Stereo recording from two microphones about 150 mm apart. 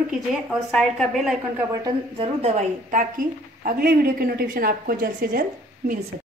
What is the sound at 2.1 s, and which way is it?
A woman's voice, 40° right (ahead or behind).